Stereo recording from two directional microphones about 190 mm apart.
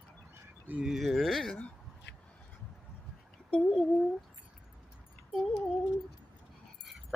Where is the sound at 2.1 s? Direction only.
65° left (ahead or behind).